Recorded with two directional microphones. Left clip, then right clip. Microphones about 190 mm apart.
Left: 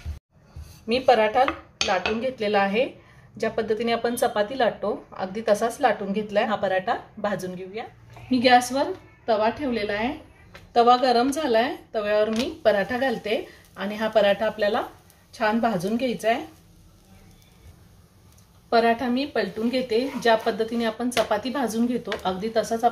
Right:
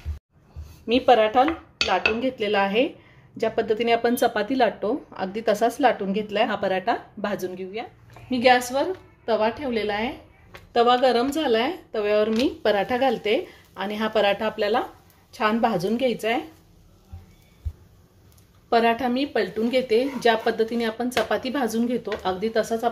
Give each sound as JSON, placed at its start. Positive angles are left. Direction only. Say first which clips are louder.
{"t": 0.8, "sound": "speech", "louder": "right 1 dB", "side_deg": -30}
{"t": 1.8, "sound": "dishes", "louder": "right 2 dB", "side_deg": -20}
{"t": 2.2, "sound": "a woman's voice", "louder": "even", "side_deg": -30}
{"t": 18.7, "sound": "a woman's voice", "louder": "even", "side_deg": -50}